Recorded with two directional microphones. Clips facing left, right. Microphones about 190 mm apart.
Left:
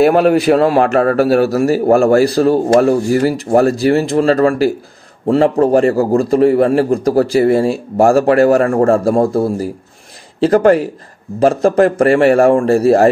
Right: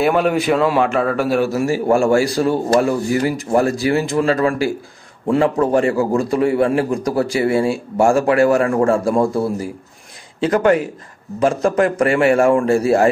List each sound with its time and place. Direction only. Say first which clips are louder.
0.0 s a man's voice: left 6 dB; 40° left (ahead or behind)